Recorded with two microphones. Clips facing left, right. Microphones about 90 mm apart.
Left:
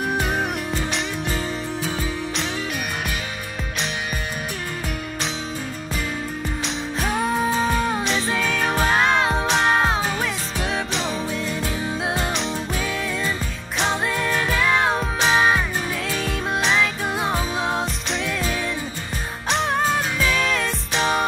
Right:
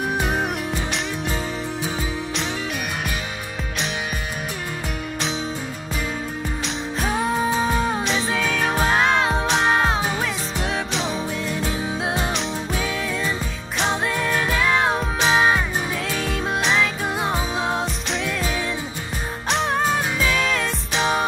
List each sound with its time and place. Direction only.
0.0 s music: centre (ahead or behind)
1.3 s music: 15° right (ahead or behind)
6.6 s music: centre (ahead or behind)